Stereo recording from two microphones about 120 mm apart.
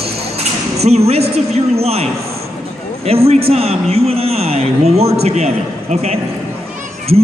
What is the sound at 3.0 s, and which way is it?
A man's voice, 55° right (ahead or behind).